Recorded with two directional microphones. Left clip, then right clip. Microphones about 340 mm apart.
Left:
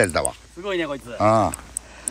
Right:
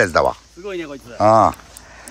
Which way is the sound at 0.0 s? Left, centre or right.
Centre.